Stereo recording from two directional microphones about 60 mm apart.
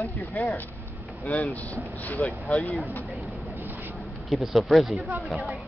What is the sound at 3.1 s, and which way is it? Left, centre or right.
Vehicle, right.